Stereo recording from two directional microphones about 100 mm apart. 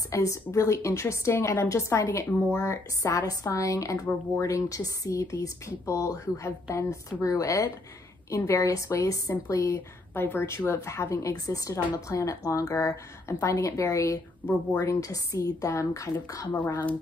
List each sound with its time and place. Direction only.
0.1 s a woman's voice: 30° left (ahead or behind)
14.4 s speech: 15° left (ahead or behind)
14.8 s a woman's voice: 35° left (ahead or behind)
16.5 s speech: 15° left (ahead or behind)